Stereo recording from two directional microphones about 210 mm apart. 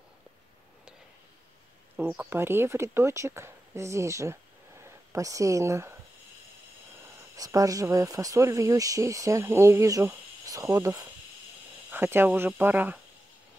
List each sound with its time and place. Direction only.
2.0 s speech: 10° right (ahead or behind)
7.3 s speech: 15° right (ahead or behind)